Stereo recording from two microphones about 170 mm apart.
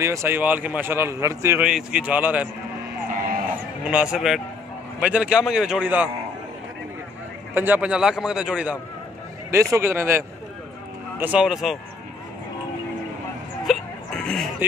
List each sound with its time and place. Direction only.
0.0 s a man's voice: 15° right (ahead or behind)
1.7 s a man's voice: 5° right (ahead or behind)
3.8 s a man's voice: 5° right (ahead or behind)
7.5 s a man's voice: 10° right (ahead or behind)
9.5 s a man's voice: 15° right (ahead or behind)
13.7 s music: 5° left (ahead or behind)